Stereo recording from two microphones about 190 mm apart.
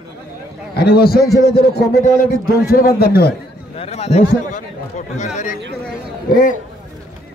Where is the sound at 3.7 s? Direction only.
30° left (ahead or behind).